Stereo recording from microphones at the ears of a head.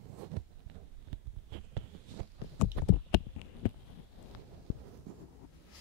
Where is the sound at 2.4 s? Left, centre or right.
Left.